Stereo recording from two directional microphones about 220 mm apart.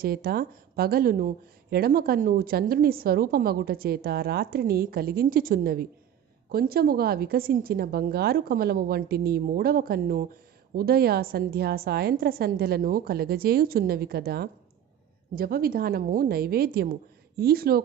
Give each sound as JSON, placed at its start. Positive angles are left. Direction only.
{"t": 0.0, "sound": "speech", "side_deg": -45}